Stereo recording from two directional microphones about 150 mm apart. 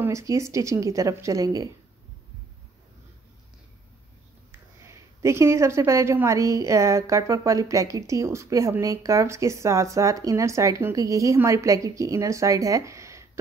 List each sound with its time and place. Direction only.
0.0 s speech: 20° right (ahead or behind)
4.5 s speech: 20° right (ahead or behind)